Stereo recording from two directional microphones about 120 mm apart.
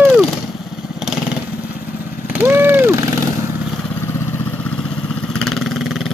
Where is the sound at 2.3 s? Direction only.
20° right (ahead or behind).